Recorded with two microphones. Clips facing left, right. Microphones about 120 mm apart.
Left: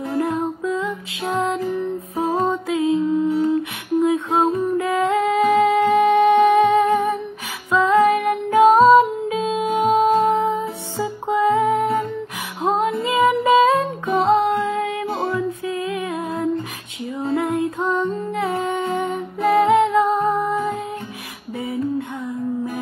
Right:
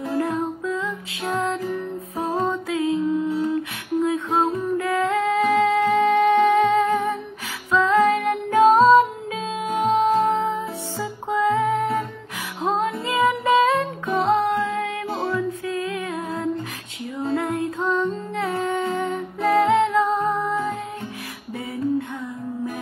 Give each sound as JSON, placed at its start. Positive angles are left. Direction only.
{"t": 0.1, "sound": "music", "side_deg": 15}